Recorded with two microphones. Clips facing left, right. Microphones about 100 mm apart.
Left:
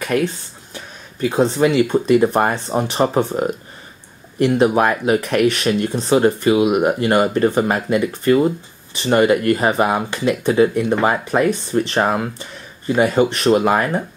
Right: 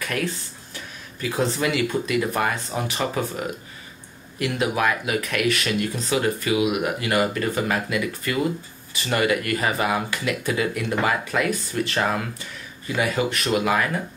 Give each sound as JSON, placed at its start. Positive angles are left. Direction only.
{"t": 0.0, "sound": "speech", "side_deg": 30}
{"t": 4.4, "sound": "speech", "side_deg": 30}